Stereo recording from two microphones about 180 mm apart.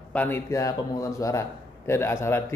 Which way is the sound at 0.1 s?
10° left (ahead or behind).